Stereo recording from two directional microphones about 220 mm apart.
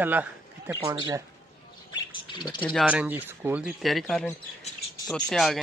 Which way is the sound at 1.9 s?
20° left (ahead or behind).